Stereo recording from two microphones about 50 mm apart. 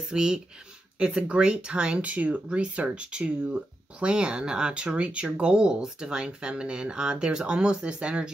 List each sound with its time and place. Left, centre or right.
0.1 s speech: centre